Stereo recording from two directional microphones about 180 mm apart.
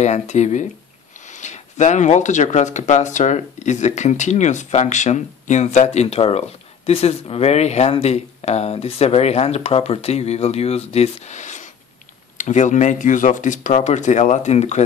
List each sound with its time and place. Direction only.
0.0 s speech: 40° left (ahead or behind)